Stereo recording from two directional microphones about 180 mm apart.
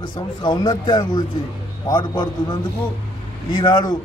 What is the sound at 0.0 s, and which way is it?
A man's voice, 25° left (ahead or behind).